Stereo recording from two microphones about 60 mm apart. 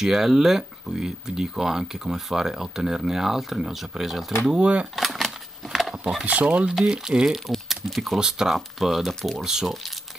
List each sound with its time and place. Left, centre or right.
0.0 s speech: centre
4.5 s speech: centre
4.9 s speech: centre
5.7 s a sound: centre
6.2 s speech: right
6.7 s speech: centre